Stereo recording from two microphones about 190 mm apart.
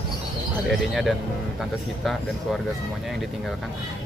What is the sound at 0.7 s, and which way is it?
Speech, centre (ahead or behind).